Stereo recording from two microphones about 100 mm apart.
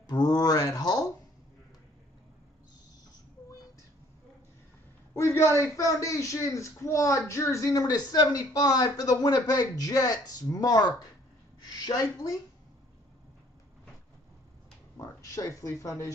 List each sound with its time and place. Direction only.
0.1 s a sound: 40° left (ahead or behind)
5.1 s a man's voice: 25° left (ahead or behind)
15.0 s a man's voice: 35° left (ahead or behind)